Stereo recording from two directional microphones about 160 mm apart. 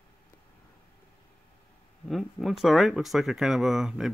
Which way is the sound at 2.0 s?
Centre (ahead or behind).